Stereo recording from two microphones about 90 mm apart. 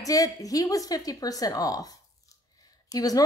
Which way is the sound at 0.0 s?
40° left (ahead or behind).